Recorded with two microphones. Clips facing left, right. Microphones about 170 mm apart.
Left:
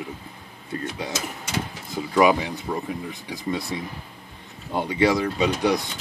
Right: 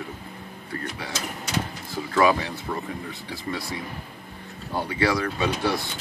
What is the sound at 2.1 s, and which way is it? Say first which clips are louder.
Speech: left 2 dB; 15° left (ahead or behind).